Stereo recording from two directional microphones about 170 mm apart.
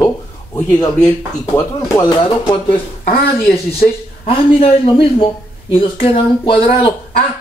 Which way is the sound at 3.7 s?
35° left (ahead or behind).